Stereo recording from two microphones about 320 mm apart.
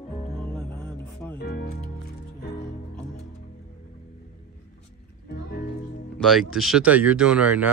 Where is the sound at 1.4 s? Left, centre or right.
Left.